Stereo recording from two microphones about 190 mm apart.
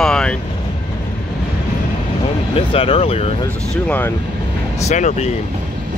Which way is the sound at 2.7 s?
30° left (ahead or behind).